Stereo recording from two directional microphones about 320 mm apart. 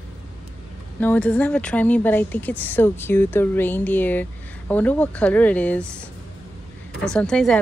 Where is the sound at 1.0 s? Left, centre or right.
Centre.